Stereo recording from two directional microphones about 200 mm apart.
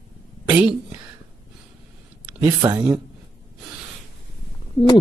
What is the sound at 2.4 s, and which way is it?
Speech, 15° right (ahead or behind).